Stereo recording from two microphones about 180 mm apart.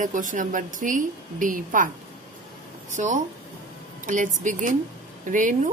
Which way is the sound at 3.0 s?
45° right (ahead or behind).